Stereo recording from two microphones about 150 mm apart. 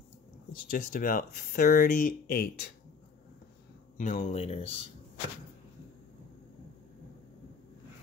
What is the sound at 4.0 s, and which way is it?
Dishes, 55° left (ahead or behind).